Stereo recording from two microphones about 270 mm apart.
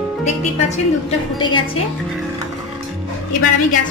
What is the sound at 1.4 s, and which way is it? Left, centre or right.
Speech, centre.